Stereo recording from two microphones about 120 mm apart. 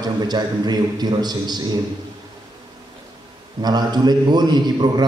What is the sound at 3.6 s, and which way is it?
A man's voice, 35° right (ahead or behind).